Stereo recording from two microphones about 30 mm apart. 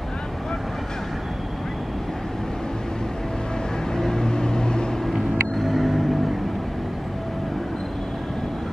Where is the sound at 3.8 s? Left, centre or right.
Centre.